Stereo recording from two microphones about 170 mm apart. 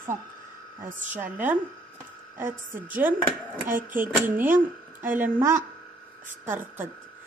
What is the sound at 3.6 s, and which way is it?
Speech, 50° right (ahead or behind).